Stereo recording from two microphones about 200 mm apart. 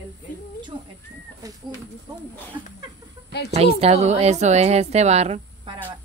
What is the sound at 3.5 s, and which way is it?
A woman's voice, 30° right (ahead or behind).